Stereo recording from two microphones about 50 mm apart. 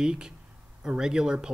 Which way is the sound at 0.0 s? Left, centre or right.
Centre.